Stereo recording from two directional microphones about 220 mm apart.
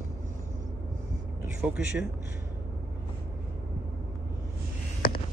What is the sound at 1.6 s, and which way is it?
Speech, 5° right (ahead or behind).